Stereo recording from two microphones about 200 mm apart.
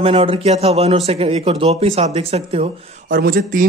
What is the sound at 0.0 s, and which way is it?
A man's voice, 30° right (ahead or behind).